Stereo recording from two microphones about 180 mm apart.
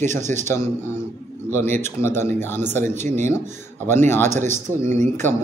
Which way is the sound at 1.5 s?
15° left (ahead or behind).